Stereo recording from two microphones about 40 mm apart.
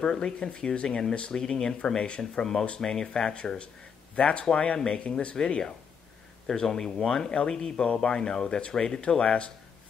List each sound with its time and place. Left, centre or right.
0.0 s speech: centre
2.8 s speech: centre